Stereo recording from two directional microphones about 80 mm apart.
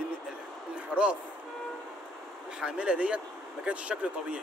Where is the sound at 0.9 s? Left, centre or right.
Centre.